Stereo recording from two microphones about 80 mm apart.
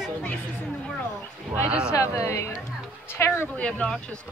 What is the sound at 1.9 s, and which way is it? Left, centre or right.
Speech, left.